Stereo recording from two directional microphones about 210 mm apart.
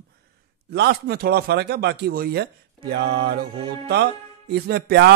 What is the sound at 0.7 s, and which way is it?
Speech, 50° right (ahead or behind).